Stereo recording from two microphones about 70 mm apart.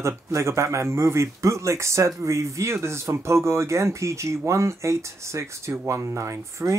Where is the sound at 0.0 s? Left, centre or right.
Right.